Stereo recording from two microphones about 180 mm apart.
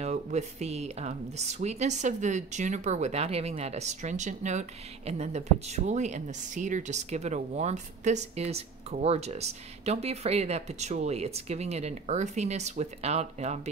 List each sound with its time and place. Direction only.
0.0 s speech: 40° right (ahead or behind)